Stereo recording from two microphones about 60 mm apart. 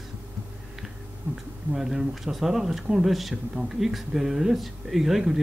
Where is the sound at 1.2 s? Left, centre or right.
Right.